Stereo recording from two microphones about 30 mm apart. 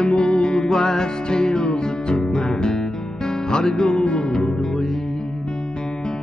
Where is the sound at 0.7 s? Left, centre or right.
Centre.